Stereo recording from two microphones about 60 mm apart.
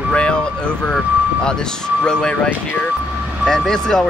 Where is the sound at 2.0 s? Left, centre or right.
Centre.